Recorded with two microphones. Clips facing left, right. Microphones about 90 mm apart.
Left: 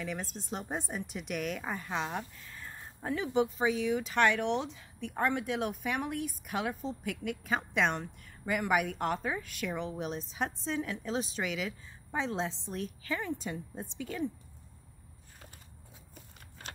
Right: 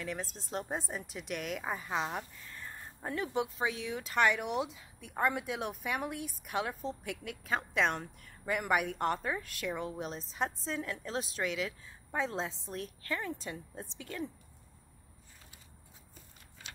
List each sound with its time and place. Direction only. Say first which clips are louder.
0.0 s speech: left 1 dB; centre (ahead or behind)
16.6 s typing: left 5 dB; 55° left (ahead or behind)